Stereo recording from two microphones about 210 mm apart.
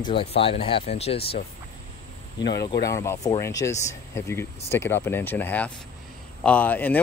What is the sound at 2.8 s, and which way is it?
Speech, 15° left (ahead or behind).